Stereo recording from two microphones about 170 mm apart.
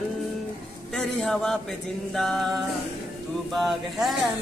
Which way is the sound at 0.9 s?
Centre (ahead or behind).